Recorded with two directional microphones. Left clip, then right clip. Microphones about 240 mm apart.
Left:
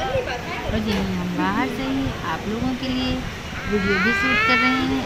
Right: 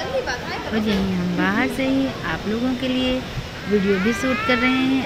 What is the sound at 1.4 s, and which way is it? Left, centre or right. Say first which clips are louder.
Speech: right 2 dB; centre.